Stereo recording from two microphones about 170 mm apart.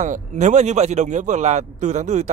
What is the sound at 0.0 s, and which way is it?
Speech, 45° right (ahead or behind).